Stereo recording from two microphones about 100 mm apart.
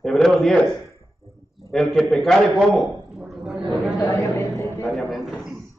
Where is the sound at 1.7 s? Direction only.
5° left (ahead or behind).